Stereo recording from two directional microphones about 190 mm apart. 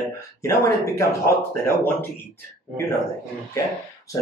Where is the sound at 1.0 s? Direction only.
15° left (ahead or behind).